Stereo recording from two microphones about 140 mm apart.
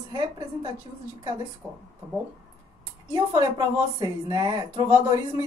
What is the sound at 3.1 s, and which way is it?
A woman's voice, 25° right (ahead or behind).